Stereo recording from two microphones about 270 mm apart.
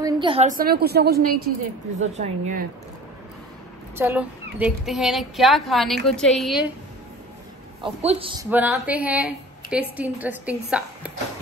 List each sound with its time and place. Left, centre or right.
0.0 s a woman's voice: centre; by 1.2 s right
2.0 s a man's voice: right
3.9 s a woman's voice: centre
7.8 s a man's voice: right
8.5 s a woman's voice: centre